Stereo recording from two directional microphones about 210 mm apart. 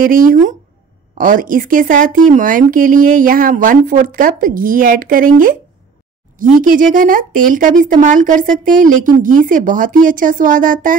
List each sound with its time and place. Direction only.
0.0 s speech: 40° right (ahead or behind)
6.6 s speech: 40° right (ahead or behind)